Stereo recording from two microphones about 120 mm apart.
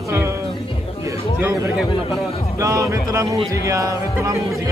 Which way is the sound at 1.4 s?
25° right (ahead or behind).